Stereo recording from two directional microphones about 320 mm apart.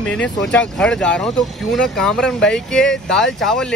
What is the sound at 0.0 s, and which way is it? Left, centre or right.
Speech, centre.